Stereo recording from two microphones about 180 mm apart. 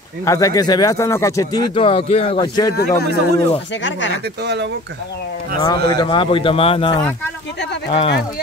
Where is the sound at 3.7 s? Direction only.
90° left.